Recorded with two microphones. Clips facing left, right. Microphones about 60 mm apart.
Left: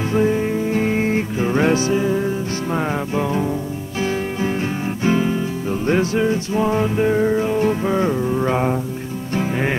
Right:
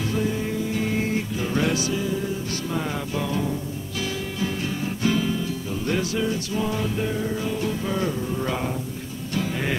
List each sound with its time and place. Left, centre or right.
0.1 s music: left